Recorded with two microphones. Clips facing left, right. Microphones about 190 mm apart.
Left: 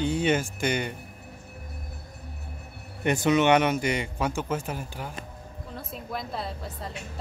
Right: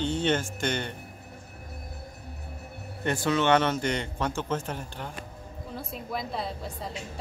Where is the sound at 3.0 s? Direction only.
15° left (ahead or behind).